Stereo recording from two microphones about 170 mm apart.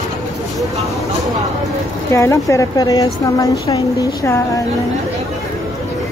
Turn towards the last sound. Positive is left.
turn(degrees=20)  # may be behind; listen again after turning